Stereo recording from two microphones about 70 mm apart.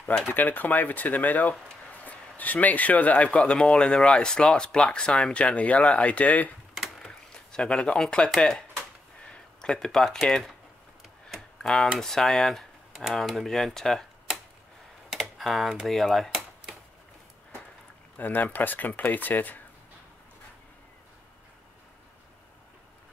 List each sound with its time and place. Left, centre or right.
0.3 s speech: left
7.1 s a sound: centre
8.4 s speech: centre
9.3 s a sound: centre
10.2 s speech: centre
11.2 s tick: centre
12.0 s speech: centre
15.0 s computer keyboard: centre
15.9 s a sound: centre
18.1 s speech: left